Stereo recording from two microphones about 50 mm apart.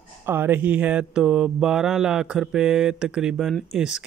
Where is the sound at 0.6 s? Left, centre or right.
Right.